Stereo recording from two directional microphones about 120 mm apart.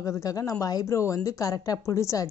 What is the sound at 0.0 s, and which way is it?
A woman's voice, 30° left (ahead or behind).